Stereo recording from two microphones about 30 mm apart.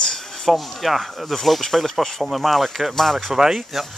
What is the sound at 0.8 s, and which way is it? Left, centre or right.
Speech, centre.